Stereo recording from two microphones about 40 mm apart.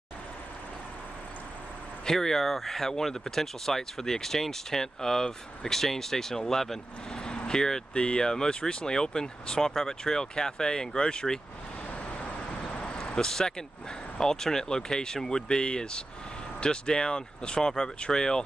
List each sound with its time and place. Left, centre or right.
2.0 s speech: centre
7.2 s vehicle: left
7.9 s speech: left
12.1 s vehicle: left; by 13.7 s centre
14.2 s speech: centre